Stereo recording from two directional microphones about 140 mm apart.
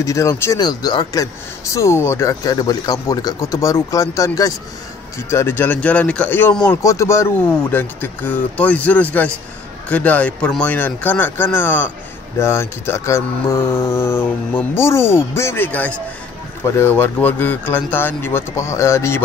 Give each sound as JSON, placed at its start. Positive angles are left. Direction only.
{"t": 0.0, "sound": "speech", "side_deg": 20}
{"t": 6.8, "sound": "speech", "side_deg": 20}